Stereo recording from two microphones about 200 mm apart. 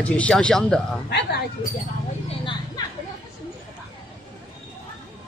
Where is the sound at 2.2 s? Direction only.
25° left (ahead or behind).